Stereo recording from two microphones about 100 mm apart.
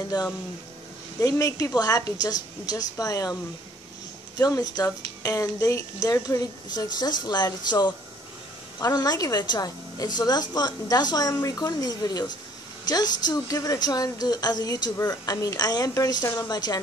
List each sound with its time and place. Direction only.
1.2 s a woman's voice: 35° left (ahead or behind)
4.4 s a woman's voice: 40° left (ahead or behind)